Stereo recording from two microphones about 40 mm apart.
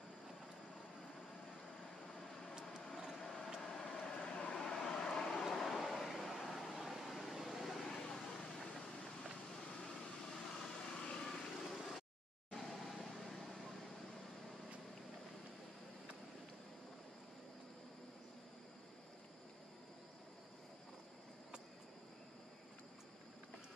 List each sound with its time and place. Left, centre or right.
3.6 s vehicle: centre
4.0 s vehicle: centre
9.6 s vehicle: centre